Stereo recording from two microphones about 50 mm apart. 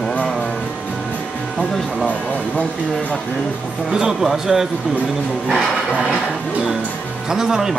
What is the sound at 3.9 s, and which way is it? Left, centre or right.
Speech, centre.